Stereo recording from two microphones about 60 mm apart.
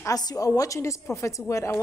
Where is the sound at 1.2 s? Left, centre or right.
Left.